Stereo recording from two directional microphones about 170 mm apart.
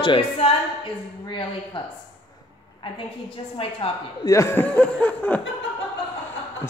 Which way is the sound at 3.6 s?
30° left (ahead or behind).